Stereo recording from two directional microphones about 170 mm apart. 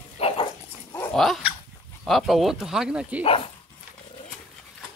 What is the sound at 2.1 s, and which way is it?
Speech, centre (ahead or behind).